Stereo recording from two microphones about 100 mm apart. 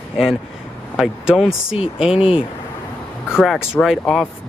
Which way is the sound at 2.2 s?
65° left (ahead or behind).